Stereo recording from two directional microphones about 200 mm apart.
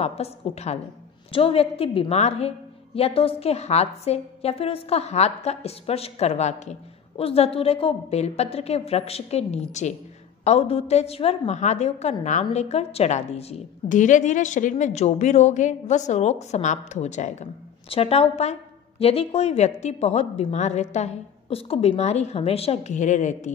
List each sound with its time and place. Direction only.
0.0 s a woman's voice: 30° left (ahead or behind)